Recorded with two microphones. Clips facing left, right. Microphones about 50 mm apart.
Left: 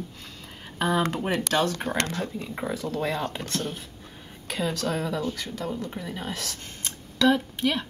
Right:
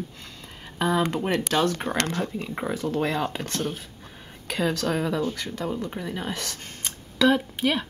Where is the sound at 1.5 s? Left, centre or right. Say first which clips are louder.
Even; centre.